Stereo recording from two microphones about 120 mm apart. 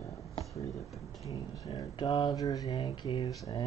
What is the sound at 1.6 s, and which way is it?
Speech, 35° left (ahead or behind).